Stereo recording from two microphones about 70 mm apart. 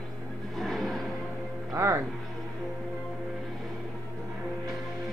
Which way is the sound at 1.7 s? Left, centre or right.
Right.